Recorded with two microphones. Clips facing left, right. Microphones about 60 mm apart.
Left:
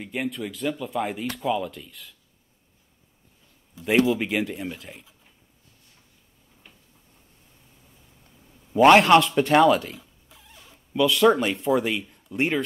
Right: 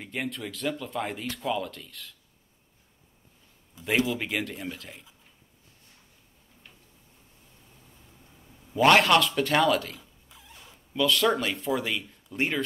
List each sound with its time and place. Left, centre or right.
0.0 s speech: centre
3.8 s speech: centre
8.7 s a man's voice: centre
12.3 s speech: centre